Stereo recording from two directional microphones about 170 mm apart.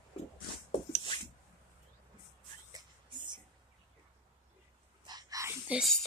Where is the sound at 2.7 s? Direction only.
25° right (ahead or behind).